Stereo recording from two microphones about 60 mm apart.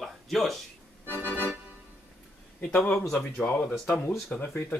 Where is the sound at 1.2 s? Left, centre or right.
Right.